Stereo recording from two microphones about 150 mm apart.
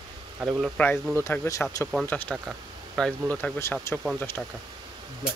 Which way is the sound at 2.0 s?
10° left (ahead or behind).